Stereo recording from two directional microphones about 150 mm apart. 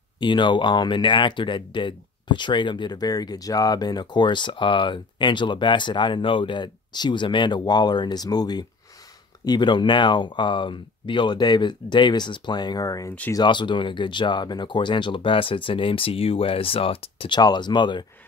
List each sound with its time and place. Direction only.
0.2 s speech: 30° left (ahead or behind)